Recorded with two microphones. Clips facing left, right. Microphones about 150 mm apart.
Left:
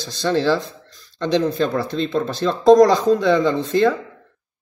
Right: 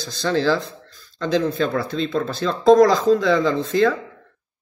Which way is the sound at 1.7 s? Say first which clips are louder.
Left 1 dB; 10° left (ahead or behind).